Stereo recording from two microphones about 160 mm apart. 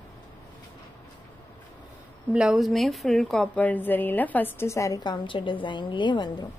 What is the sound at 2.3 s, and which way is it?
A woman's voice, 5° right (ahead or behind).